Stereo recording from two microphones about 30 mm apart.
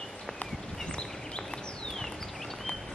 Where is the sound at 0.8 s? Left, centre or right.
Left.